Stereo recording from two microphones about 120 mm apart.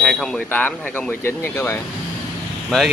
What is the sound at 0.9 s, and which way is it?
Speech, 15° left (ahead or behind).